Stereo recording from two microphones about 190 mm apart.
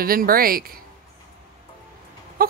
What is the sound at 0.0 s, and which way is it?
Speech, 50° right (ahead or behind).